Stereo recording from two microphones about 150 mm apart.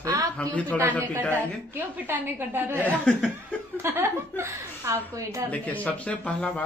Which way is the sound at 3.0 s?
5° left (ahead or behind).